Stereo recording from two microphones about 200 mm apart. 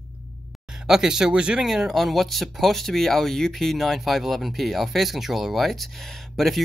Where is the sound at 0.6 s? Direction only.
5° right (ahead or behind).